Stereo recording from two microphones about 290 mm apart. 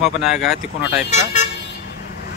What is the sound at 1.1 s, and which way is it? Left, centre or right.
Speech, left.